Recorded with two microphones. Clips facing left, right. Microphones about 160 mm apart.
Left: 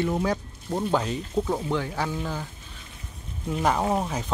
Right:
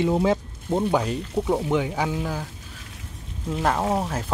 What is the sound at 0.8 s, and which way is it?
Speech, 10° right (ahead or behind).